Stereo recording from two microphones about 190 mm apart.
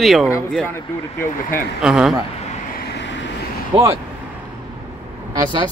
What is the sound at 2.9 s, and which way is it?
Vehicle, 70° left (ahead or behind).